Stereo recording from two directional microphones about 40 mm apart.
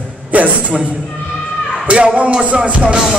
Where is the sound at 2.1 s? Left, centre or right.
Right.